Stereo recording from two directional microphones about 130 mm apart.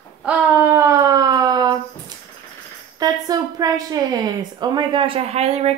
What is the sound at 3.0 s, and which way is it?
Speech, 30° right (ahead or behind).